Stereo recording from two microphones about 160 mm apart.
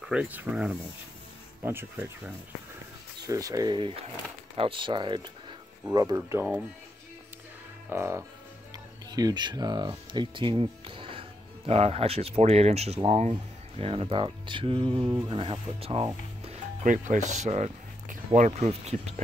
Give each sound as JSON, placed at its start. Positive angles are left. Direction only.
{"t": 0.1, "sound": "speech", "side_deg": -10}
{"t": 7.9, "sound": "speech", "side_deg": -15}
{"t": 16.8, "sound": "speech", "side_deg": -50}